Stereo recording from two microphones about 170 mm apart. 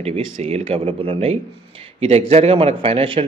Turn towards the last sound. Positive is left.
turn(degrees=-35)  # may be behind; listen again after turning